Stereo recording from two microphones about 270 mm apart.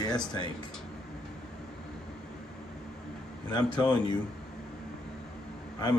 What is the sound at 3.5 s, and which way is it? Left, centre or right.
Speech, centre.